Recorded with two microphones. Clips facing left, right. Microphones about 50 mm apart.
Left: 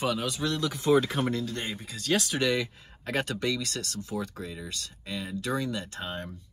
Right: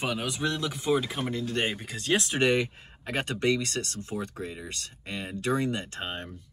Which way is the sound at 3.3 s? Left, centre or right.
Right.